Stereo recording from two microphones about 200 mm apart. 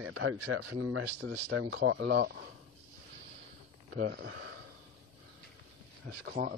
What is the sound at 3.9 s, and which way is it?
Speech, 55° right (ahead or behind).